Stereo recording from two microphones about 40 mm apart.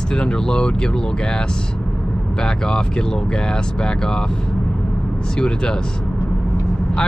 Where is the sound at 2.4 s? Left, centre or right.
Centre.